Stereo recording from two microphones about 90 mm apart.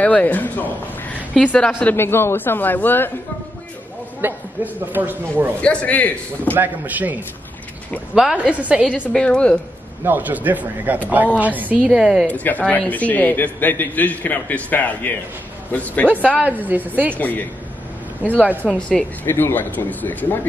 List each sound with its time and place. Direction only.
0.0 s a man's voice: 15° left (ahead or behind)
2.0 s a man's voice: 25° left (ahead or behind)
4.2 s speech: 20° right (ahead or behind)
5.6 s a man's voice: 15° left (ahead or behind)
6.5 s a woman's voice: 20° right (ahead or behind)
9.1 s a man's voice: 10° left (ahead or behind)
10.0 s a woman's voice: 20° right (ahead or behind)
11.9 s a woman's voice: 5° right (ahead or behind)
12.3 s a man's voice: 15° left (ahead or behind)
16.3 s speech: 20° right (ahead or behind)
17.2 s a man's voice: 20° left (ahead or behind)
18.6 s a man's voice: 10° left (ahead or behind)
19.2 s a man's voice: 25° left (ahead or behind)